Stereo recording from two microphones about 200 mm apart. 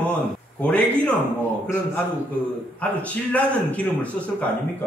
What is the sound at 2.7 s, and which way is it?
Speech, 5° left (ahead or behind).